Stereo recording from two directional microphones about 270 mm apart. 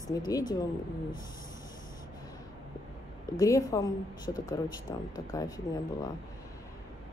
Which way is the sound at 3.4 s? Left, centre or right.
Centre.